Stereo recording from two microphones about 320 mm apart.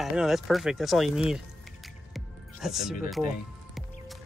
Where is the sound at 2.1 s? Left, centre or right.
Centre.